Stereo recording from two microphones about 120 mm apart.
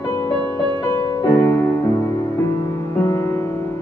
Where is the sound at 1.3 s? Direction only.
25° left (ahead or behind).